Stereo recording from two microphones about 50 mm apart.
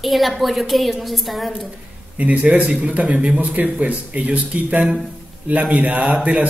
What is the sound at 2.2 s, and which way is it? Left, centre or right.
Speech, right.